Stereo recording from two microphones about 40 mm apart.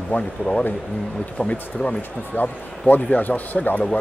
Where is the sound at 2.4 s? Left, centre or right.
Left.